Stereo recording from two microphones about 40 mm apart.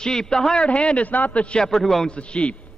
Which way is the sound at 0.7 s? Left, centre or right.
Left.